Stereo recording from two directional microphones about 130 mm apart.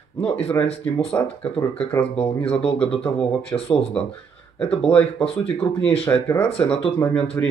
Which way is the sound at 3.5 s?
20° left (ahead or behind).